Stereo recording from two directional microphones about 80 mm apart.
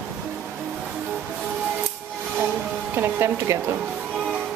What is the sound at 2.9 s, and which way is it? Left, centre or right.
Speech, right.